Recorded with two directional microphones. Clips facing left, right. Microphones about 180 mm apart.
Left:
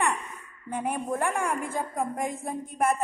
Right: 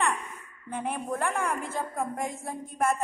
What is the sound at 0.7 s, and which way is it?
A woman's voice, 15° left (ahead or behind).